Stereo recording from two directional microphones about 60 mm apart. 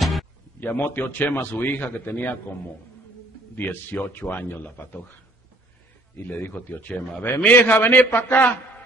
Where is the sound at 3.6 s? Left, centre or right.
Left.